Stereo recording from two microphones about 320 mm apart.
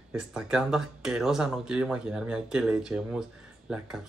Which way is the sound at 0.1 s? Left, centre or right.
Centre.